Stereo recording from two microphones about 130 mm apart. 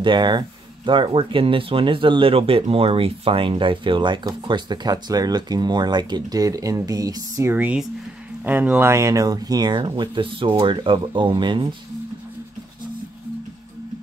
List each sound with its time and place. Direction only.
0.0 s speech: 35° right (ahead or behind)
7.5 s speech: 15° right (ahead or behind); by 11.7 s 35° right (ahead or behind)